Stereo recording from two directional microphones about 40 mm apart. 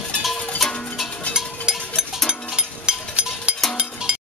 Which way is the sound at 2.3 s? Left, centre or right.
Right.